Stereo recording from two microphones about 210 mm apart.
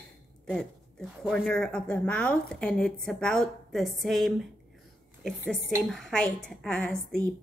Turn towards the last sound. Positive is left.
turn(degrees=5)  # may be behind; listen again after turning